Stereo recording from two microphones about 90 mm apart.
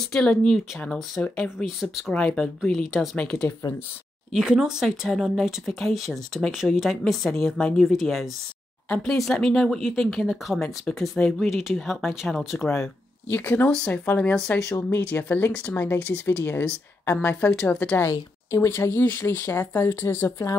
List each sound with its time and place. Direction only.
0.0 s speech: 5° left (ahead or behind)
1.8 s speech: centre (ahead or behind)
2.1 s speech: 15° left (ahead or behind)
4.3 s speech: 5° right (ahead or behind)
13.3 s speech: 25° left (ahead or behind)
13.7 s speech: 10° left (ahead or behind)
14.6 s speech: 30° left (ahead or behind)
18.0 s speech: 35° left (ahead or behind)